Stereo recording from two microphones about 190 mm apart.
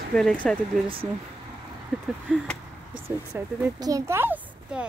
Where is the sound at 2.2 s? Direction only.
Centre (ahead or behind).